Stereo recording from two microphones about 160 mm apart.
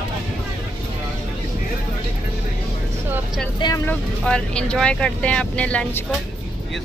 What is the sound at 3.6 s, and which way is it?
Speech, 20° left (ahead or behind).